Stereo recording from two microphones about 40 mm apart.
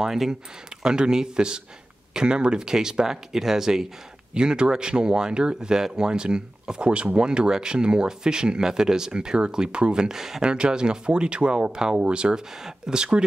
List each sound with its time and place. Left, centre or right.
0.0 s speech: centre
4.3 s speech: right
10.4 s speech: right